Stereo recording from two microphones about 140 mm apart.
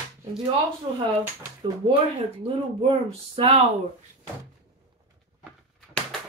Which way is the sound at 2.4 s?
40° right (ahead or behind).